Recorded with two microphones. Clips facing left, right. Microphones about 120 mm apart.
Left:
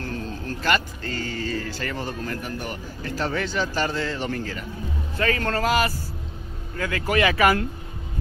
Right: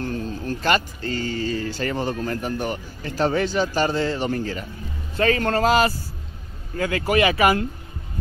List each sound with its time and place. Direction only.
0.0 s vehicle: 20° right (ahead or behind)
1.0 s music: 50° left (ahead or behind)
1.7 s speech: 25° right (ahead or behind)
7.1 s speech: 10° right (ahead or behind)